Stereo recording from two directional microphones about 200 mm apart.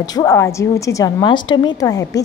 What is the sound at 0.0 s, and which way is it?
A woman's voice, 20° left (ahead or behind).